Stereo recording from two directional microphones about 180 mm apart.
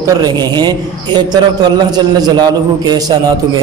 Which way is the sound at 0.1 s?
20° right (ahead or behind).